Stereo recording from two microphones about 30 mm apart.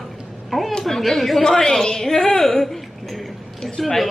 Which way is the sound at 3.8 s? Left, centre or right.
Centre.